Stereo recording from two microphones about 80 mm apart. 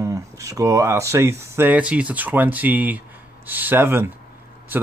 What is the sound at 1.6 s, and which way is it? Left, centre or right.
Speech, centre.